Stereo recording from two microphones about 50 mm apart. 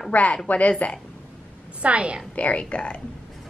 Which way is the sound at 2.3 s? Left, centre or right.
Left.